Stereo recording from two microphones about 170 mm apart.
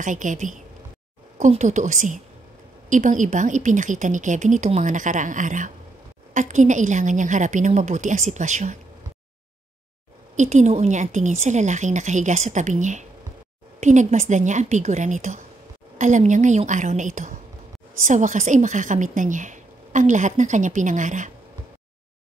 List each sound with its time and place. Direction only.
0.0 s a woman's voice: 50° right (ahead or behind)
10.3 s a woman's voice: 45° right (ahead or behind)